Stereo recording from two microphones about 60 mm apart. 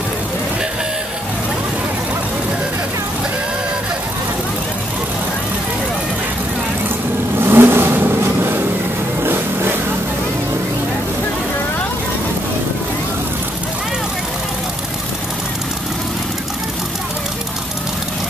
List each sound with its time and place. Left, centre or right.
7.3 s vehicle: right